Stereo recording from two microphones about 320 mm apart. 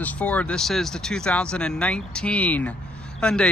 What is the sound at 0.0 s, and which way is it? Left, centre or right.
Speech, centre.